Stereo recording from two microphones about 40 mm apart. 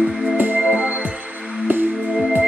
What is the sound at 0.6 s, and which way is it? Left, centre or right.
Music, right.